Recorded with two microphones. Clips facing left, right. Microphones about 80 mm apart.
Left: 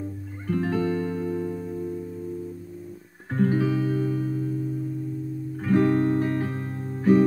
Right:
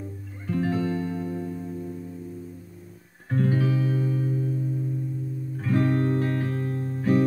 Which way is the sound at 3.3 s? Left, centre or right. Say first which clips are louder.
Left 2 dB; left.